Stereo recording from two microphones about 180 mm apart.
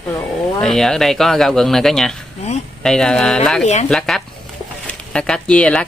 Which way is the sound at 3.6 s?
40° left (ahead or behind).